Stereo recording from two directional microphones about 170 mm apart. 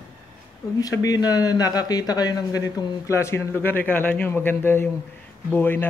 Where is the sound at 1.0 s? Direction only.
20° left (ahead or behind).